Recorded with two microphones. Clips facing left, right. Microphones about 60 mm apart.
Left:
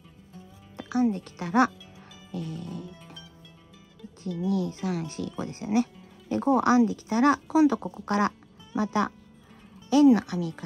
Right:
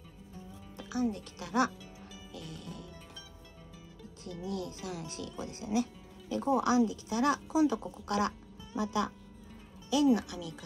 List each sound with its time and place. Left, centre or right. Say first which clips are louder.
0.7 s speech: left 8 dB; left
4.6 s speech: left 9 dB; left
8.0 s speech: left 6 dB; left